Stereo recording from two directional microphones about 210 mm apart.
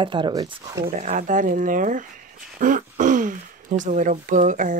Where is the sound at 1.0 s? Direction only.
35° right (ahead or behind).